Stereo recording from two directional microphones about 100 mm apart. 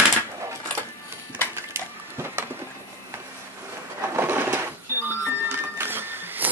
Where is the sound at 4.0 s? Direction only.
25° right (ahead or behind).